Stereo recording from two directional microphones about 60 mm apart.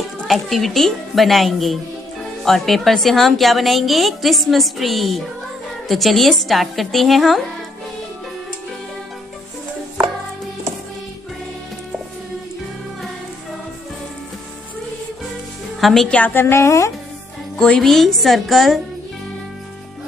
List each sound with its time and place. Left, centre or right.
0.3 s a woman's voice: centre
15.8 s a woman's voice: centre
16.3 s a woman's voice: left
17.6 s a woman's voice: centre